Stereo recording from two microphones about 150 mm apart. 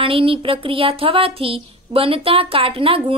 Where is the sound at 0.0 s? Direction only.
40° right (ahead or behind).